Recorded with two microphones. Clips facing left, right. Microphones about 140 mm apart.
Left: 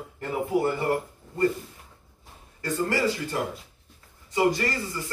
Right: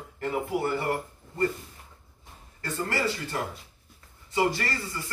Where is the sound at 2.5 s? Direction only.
20° left (ahead or behind).